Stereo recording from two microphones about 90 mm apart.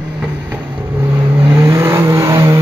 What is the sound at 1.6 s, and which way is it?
Vehicle, 35° right (ahead or behind).